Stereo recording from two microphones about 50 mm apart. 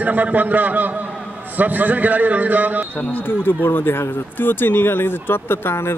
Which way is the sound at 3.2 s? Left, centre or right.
Left.